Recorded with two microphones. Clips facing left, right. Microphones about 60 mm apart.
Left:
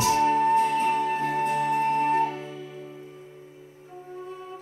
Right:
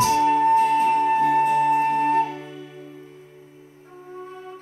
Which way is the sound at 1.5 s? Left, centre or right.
Centre.